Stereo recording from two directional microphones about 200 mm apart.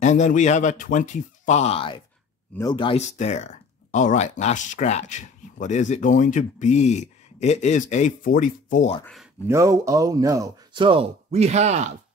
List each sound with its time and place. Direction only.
0.0 s speech: 35° left (ahead or behind)
9.0 s speech: centre (ahead or behind)
9.5 s speech: 15° right (ahead or behind); by 11.9 s 35° right (ahead or behind)